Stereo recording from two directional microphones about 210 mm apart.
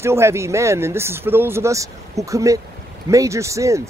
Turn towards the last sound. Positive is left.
turn(degrees=-15)  # may be behind; listen again after turning